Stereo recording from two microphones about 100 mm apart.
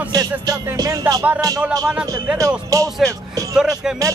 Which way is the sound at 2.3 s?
35° right (ahead or behind).